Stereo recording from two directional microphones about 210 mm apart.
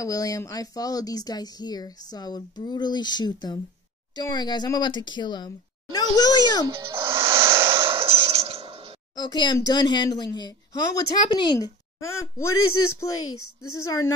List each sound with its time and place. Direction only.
0.0 s speech: 15° left (ahead or behind)
6.8 s music: 10° right (ahead or behind)
7.7 s a sound: 25° right (ahead or behind)
9.1 s speech: 20° left (ahead or behind)
12.5 s a woman's voice: 90° left
13.0 s a woman's voice: 15° left (ahead or behind)
13.3 s a woman's voice: 90° left
13.7 s a woman's voice: 15° left (ahead or behind)